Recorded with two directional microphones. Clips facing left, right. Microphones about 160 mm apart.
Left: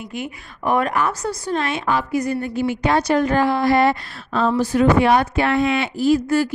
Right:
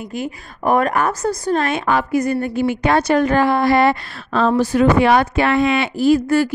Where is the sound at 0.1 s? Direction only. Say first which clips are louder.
Right 4 dB; 40° right (ahead or behind).